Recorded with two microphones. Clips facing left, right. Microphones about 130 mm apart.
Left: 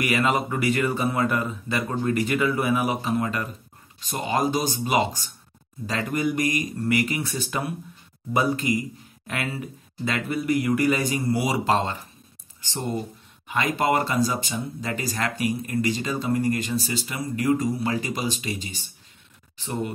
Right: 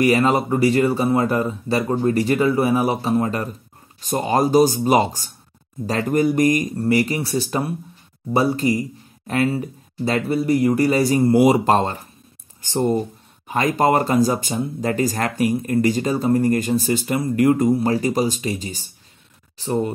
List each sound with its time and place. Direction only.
0.0 s speech: 35° right (ahead or behind)